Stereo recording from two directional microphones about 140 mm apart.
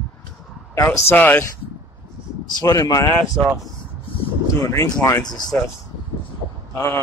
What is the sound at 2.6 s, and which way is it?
Speech, 25° left (ahead or behind).